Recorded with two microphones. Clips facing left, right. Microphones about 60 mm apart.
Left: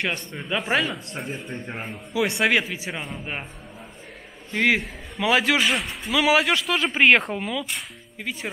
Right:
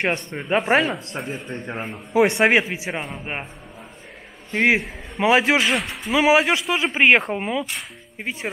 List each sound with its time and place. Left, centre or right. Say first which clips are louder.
0.0 s speech: right 4 dB; right
1.1 s speech: right 2 dB; centre
2.1 s speech: right 5 dB; right
2.6 s speech: right 3 dB; centre
4.5 s speech: right 3 dB; right
5.6 s speech: right 2 dB; centre
6.1 s speech: right 3 dB; right